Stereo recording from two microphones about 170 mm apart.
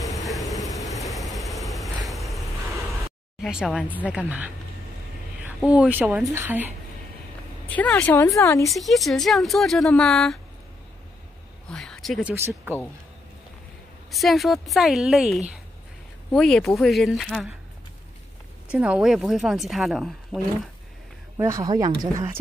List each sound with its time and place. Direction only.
0.0 s vehicle: centre (ahead or behind)
3.4 s speech: centre (ahead or behind)
5.6 s speech: 5° right (ahead or behind)
7.6 s a woman's voice: 10° left (ahead or behind)
8.7 s speech: centre (ahead or behind)
11.7 s speech: 5° left (ahead or behind); by 12.7 s 15° right (ahead or behind)
14.1 s speech: centre (ahead or behind)
18.7 s speech: 5° right (ahead or behind)
21.4 s speech: 20° right (ahead or behind)